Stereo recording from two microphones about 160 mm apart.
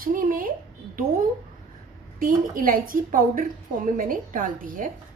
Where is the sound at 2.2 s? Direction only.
60° right (ahead or behind).